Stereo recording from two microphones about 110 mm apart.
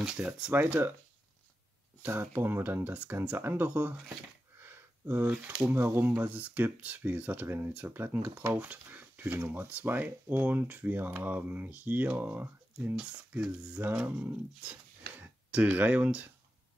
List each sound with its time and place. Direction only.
0.0 s speech: 10° right (ahead or behind)
2.0 s speech: 20° right (ahead or behind)
4.6 s a sound: 20° right (ahead or behind)
5.8 s speech: 20° right (ahead or behind)